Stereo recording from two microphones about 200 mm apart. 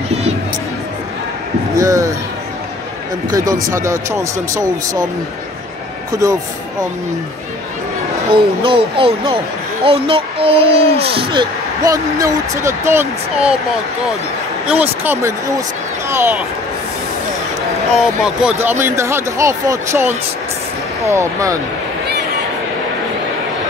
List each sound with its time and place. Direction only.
1.8 s speech: 15° right (ahead or behind)
3.3 s speech: 15° right (ahead or behind)
6.2 s speech: 15° right (ahead or behind)
8.3 s speech: 25° right (ahead or behind); by 13.6 s 10° right (ahead or behind)
14.7 s speech: 10° right (ahead or behind)
17.9 s speech: centre (ahead or behind)